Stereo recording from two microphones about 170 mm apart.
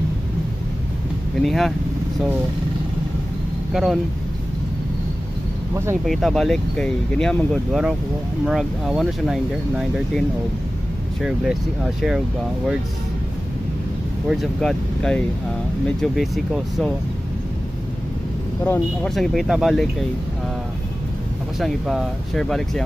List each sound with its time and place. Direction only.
1.4 s speech: centre (ahead or behind)
3.7 s speech: centre (ahead or behind)
6.0 s speech: centre (ahead or behind)
11.2 s speech: 5° right (ahead or behind)
14.3 s speech: centre (ahead or behind)
19.0 s speech: centre (ahead or behind)
21.5 s speech: centre (ahead or behind)